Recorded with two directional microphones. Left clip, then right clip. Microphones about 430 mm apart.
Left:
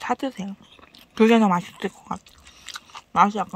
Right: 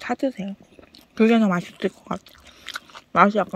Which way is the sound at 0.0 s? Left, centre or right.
Centre.